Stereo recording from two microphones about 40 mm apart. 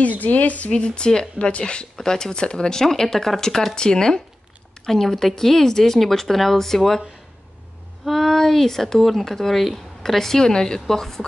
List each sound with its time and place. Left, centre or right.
0.0 s speech: left
0.7 s speech: left
2.0 s speech: centre
8.0 s speech: centre